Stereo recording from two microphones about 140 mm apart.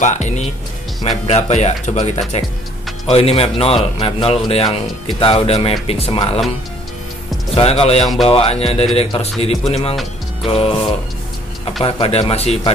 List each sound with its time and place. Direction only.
0.0 s music: 55° left (ahead or behind)
1.0 s speech: 55° left (ahead or behind)
7.5 s speech: 45° left (ahead or behind)
10.4 s music: 40° left (ahead or behind)
11.8 s speech: 40° left (ahead or behind)